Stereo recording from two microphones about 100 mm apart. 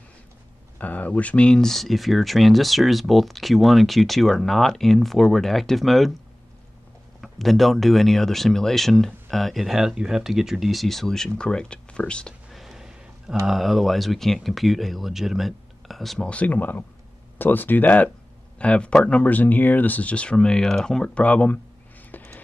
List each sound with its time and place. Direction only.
0.7 s speech: 15° left (ahead or behind); by 6.1 s centre (ahead or behind)
7.2 s speech: centre (ahead or behind)
12.4 s a sound: centre (ahead or behind)
13.5 s speech: centre (ahead or behind)
16.3 s speech: 15° left (ahead or behind)
22.1 s music: 15° left (ahead or behind)